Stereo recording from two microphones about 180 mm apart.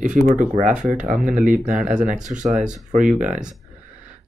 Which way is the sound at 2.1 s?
45° right (ahead or behind).